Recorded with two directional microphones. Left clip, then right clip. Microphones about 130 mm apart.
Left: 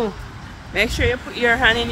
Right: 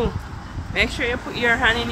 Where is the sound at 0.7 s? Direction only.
35° left (ahead or behind).